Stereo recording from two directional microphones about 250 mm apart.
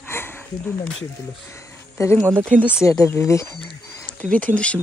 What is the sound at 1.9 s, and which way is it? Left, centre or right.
Speech, centre.